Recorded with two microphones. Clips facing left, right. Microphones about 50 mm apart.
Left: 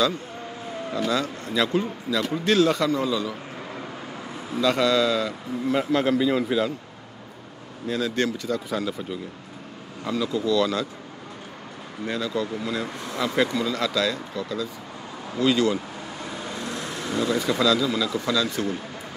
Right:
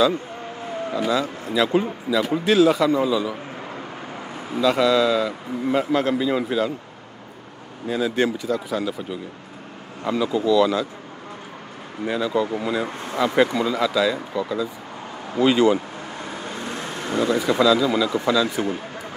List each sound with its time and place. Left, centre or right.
0.9 s a man's voice: centre
7.9 s a man's voice: centre
10.0 s a man's voice: centre
12.0 s a man's voice: centre
16.5 s vehicle: right
17.3 s a man's voice: centre